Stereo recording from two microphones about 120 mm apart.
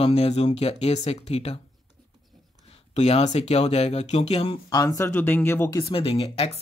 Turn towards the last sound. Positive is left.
turn(degrees=55)  # may be behind; listen again after turning